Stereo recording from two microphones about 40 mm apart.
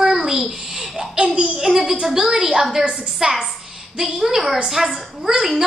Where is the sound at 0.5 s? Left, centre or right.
Right.